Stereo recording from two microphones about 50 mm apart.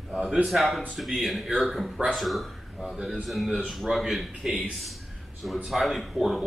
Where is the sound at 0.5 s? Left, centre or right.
Centre.